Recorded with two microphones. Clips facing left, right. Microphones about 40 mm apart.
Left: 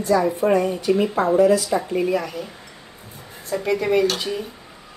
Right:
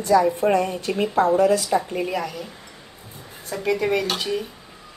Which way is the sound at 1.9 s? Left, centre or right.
Centre.